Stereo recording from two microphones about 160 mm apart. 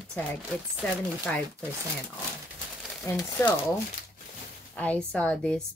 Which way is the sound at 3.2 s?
15° left (ahead or behind).